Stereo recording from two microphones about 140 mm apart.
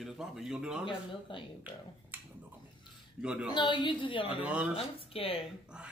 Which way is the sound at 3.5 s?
35° left (ahead or behind).